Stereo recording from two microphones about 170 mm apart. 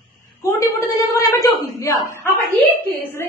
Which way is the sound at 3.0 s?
10° left (ahead or behind).